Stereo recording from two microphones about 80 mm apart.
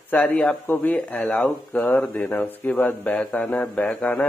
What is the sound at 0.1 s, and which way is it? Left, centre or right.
Speech, centre.